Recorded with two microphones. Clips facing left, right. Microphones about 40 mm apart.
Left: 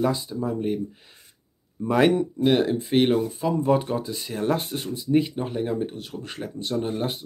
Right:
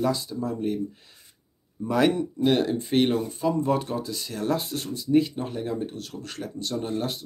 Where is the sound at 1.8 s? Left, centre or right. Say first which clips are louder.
Left 3 dB; left.